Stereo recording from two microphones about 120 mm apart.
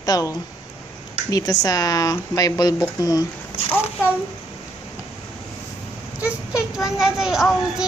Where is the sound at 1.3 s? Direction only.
30° left (ahead or behind).